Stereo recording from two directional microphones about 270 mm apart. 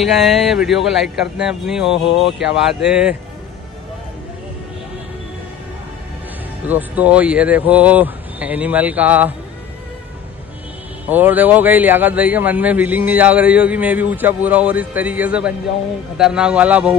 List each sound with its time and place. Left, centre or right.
0.0 s a man's voice: centre
6.7 s a man's voice: centre
11.1 s a man's voice: centre